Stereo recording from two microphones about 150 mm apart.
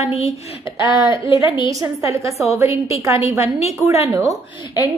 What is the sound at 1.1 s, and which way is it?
A woman's voice, 20° right (ahead or behind).